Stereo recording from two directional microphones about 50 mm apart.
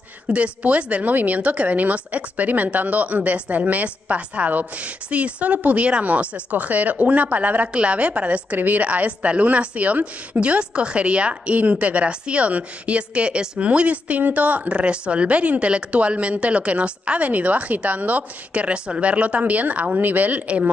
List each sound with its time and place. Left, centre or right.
0.3 s a woman's voice: right